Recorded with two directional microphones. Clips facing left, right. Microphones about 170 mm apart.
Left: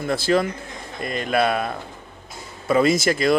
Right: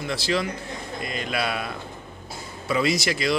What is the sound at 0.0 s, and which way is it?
A man's voice, 50° left (ahead or behind).